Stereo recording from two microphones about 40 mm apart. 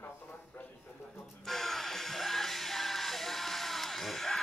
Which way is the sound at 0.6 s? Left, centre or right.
Left.